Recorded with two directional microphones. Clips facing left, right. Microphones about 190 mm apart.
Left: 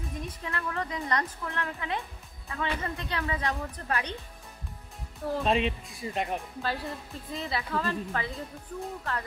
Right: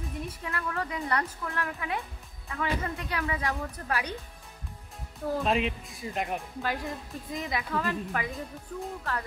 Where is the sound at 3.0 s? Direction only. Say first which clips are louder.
Even; 10° right (ahead or behind).